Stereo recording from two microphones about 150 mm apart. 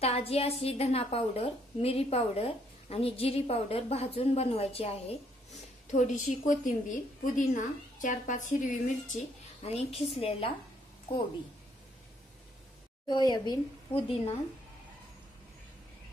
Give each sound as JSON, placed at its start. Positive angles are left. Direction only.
{"t": 0.0, "sound": "a woman's voice", "side_deg": 40}
{"t": 5.9, "sound": "a woman's voice", "side_deg": 60}
{"t": 13.1, "sound": "speech", "side_deg": 30}